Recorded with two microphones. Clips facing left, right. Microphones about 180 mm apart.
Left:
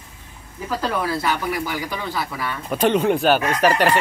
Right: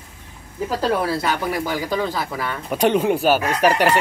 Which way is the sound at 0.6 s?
30° right (ahead or behind).